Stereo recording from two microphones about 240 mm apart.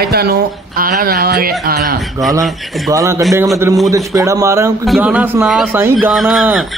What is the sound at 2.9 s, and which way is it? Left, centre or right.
Speech, centre.